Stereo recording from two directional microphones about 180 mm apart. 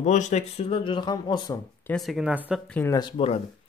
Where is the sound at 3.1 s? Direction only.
35° left (ahead or behind).